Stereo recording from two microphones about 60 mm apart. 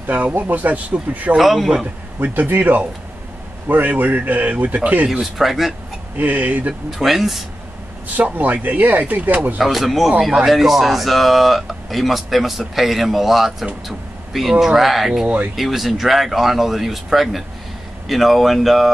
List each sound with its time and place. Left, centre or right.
0.0 s a man's voice: right
1.3 s a man's voice: centre
2.2 s a man's voice: right
5.2 s a man's voice: centre
6.1 s a man's voice: right
7.0 s a man's voice: centre
8.2 s a man's voice: right
9.6 s a man's voice: centre